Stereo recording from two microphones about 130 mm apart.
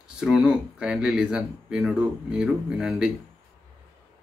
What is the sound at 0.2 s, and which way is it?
Speech, 5° right (ahead or behind).